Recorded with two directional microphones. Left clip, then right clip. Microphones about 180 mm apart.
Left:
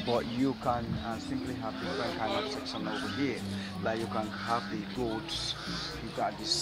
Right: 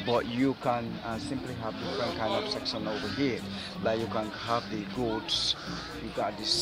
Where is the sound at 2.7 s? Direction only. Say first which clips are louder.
Right 3 dB; 55° right (ahead or behind).